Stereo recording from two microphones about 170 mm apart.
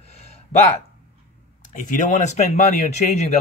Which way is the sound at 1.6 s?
50° left (ahead or behind).